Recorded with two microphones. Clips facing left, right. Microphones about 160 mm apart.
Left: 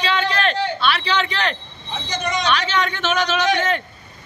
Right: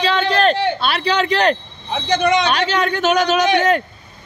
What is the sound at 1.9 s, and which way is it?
Speech, 60° right (ahead or behind).